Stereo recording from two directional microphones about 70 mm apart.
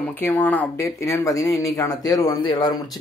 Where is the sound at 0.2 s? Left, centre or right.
Left.